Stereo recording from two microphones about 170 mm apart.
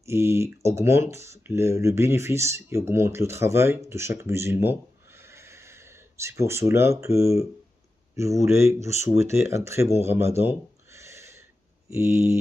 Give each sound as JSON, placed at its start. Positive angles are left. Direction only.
{"t": 0.0, "sound": "speech", "side_deg": -15}